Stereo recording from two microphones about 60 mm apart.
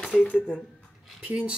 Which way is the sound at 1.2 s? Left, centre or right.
Centre.